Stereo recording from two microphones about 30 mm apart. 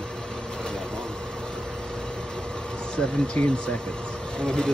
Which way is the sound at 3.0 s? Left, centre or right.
Left.